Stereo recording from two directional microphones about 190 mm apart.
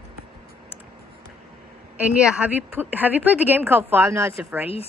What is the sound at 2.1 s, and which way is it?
A woman's voice, 5° right (ahead or behind).